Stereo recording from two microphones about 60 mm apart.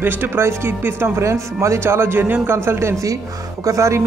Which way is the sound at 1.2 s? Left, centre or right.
Right.